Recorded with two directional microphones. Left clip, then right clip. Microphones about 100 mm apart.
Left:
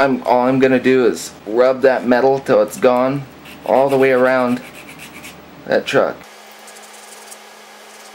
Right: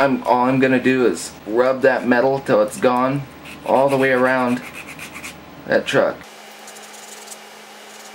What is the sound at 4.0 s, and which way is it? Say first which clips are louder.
Speech: left 3 dB; 40° left (ahead or behind).